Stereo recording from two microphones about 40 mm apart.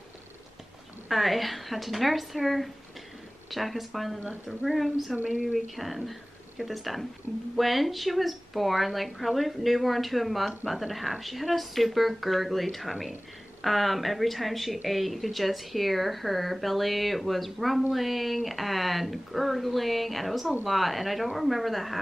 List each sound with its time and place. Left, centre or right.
1.0 s speech: centre
5.1 s a woman's voice: right
5.5 s speech: centre